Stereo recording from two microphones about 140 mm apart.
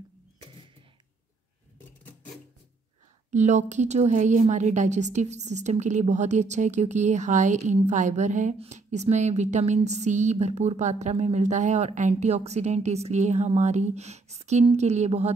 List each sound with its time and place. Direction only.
3.3 s a woman's voice: 55° right (ahead or behind)